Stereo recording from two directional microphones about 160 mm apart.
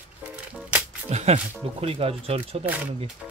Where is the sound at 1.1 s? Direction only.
40° right (ahead or behind).